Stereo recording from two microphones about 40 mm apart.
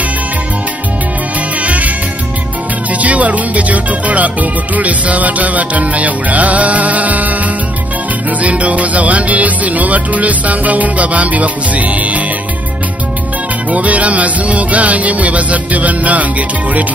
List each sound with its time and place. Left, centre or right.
1.6 s music: right
2.9 s music: right
13.7 s music: right